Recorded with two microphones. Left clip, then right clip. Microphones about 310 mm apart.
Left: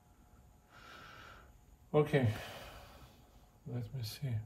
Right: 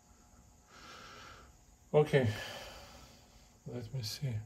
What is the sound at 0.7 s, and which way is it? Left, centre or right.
Snort, right.